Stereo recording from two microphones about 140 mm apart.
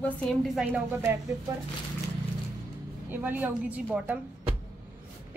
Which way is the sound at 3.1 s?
10° right (ahead or behind).